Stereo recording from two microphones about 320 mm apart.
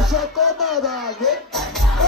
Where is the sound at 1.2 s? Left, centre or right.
Centre.